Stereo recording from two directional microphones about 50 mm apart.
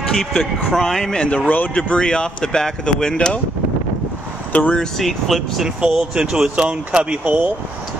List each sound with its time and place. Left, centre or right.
0.1 s speech: centre
1.2 s speech: left
1.8 s speech: centre
4.5 s speech: left
4.9 s speech: centre
5.8 s speech: centre
7.2 s speech: right